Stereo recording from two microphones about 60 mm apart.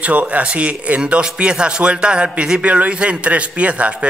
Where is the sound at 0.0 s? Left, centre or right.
Right.